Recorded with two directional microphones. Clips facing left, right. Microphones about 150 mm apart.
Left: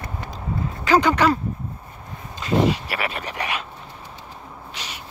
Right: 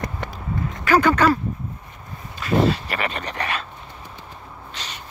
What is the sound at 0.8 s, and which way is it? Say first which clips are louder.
Speech: right 1 dB; 20° left (ahead or behind).